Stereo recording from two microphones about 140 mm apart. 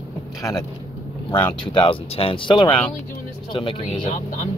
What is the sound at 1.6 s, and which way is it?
Speech, 35° left (ahead or behind).